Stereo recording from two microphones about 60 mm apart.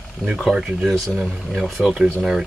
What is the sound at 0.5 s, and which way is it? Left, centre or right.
Speech, centre.